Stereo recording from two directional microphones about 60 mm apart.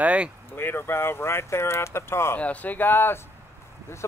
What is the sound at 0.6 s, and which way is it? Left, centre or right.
Speech, left.